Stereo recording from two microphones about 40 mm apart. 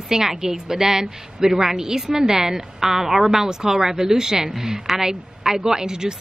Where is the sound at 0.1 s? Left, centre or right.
Centre.